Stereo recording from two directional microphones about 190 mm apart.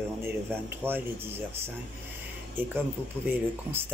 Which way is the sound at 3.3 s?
10° right (ahead or behind).